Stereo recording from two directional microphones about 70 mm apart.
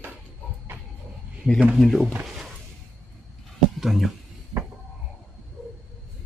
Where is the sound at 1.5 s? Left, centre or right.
Left.